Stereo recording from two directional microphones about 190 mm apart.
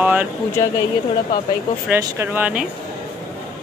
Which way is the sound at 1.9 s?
10° right (ahead or behind).